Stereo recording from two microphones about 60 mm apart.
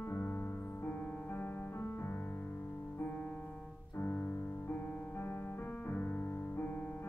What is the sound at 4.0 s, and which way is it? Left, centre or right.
Piano, left.